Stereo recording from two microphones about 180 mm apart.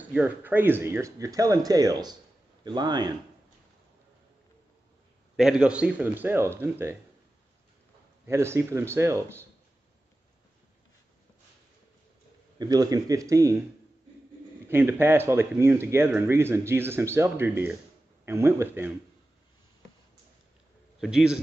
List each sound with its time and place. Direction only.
0.0 s speech: 10° right (ahead or behind)
5.3 s speech: 5° right (ahead or behind)
8.3 s speech: 15° right (ahead or behind)
12.5 s speech: 20° right (ahead or behind)
14.7 s speech: 15° right (ahead or behind)
21.0 s a man's voice: 5° right (ahead or behind)